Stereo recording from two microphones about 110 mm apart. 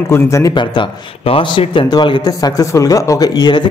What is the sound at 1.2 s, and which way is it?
Speech, 55° left (ahead or behind).